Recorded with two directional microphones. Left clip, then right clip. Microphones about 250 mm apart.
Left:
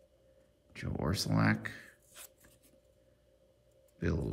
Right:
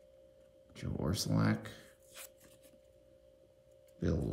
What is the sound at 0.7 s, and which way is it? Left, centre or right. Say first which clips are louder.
Speech: left 2 dB; centre.